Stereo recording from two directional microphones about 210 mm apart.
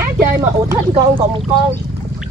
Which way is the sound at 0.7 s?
20° right (ahead or behind).